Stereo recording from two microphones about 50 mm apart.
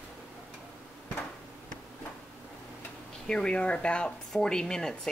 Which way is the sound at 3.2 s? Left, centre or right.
Centre.